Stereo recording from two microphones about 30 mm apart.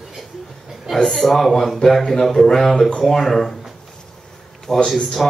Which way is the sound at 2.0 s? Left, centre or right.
Centre.